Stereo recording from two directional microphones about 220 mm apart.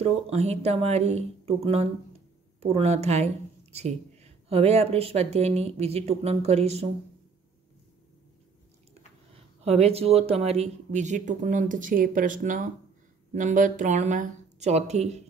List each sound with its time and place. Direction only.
0.0 s speech: 30° right (ahead or behind)
9.3 s speech: 30° right (ahead or behind)